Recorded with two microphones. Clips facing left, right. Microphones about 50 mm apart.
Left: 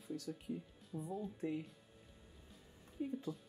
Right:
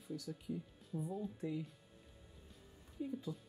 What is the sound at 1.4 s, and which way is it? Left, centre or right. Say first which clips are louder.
Speech: left 2 dB; left.